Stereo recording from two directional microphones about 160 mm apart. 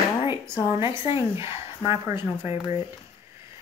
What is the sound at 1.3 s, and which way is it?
Speech, 15° right (ahead or behind).